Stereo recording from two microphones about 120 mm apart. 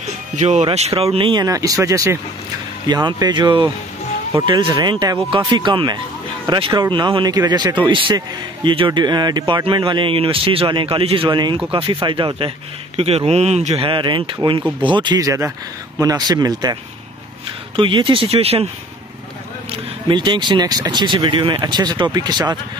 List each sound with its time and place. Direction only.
0.4 s speech: 85° right
0.7 s speech: 60° right (ahead or behind)
1.4 s speech: 30° right (ahead or behind)
2.9 s speech: 35° right (ahead or behind); by 13.8 s 70° right (ahead or behind)
13.8 s speech: 45° right (ahead or behind)
17.7 s speech: 45° right (ahead or behind)
19.7 s speech: 40° right (ahead or behind)